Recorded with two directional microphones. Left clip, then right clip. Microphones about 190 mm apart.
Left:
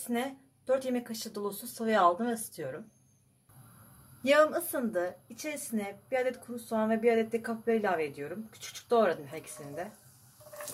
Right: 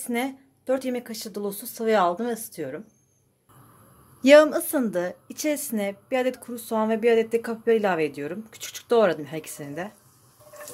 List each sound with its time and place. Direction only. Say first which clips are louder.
0.1 s speech: right 6 dB; 40° right (ahead or behind)
4.2 s a woman's voice: right 10 dB; 50° right (ahead or behind)